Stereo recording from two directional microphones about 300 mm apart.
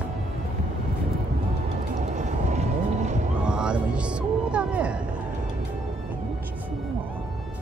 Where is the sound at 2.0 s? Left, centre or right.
Right.